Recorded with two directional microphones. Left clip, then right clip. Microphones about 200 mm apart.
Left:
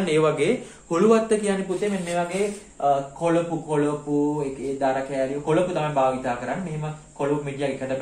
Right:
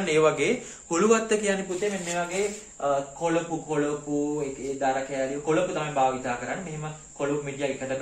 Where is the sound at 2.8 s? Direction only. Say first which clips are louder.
Left 4 dB; 10° right (ahead or behind).